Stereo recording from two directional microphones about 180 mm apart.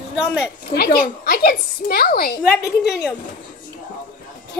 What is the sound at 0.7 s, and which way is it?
A woman's voice, 60° left (ahead or behind).